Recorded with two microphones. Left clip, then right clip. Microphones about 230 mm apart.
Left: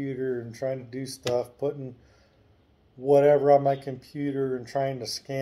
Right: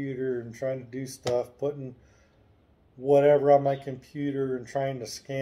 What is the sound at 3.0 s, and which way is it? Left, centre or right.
Speech, centre.